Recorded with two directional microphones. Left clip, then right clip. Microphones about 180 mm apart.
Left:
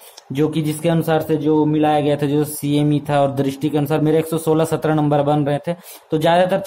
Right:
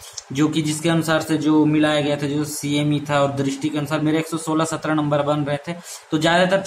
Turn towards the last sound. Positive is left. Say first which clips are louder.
# left 2 dB
turn(degrees=50)  # may be behind; listen again after turning